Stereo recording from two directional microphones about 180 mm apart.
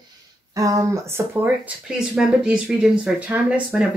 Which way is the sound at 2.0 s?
Centre (ahead or behind).